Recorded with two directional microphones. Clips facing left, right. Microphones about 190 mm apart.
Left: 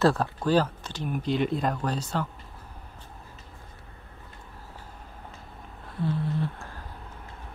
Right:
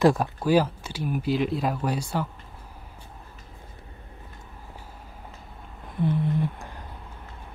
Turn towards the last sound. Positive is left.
turn(degrees=-15)  # may be behind; listen again after turning